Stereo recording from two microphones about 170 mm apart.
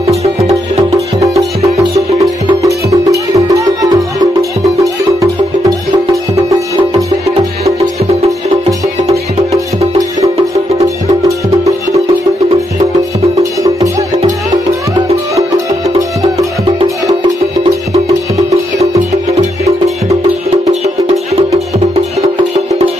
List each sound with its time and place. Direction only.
0.9 s music: 20° right (ahead or behind)
8.6 s music: 20° right (ahead or behind)
10.8 s music: 20° right (ahead or behind)
13.4 s music: 20° right (ahead or behind)
19.6 s music: 20° right (ahead or behind)
20.8 s music: 40° right (ahead or behind)